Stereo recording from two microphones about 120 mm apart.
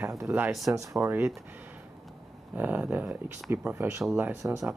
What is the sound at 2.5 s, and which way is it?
Speech, 15° right (ahead or behind).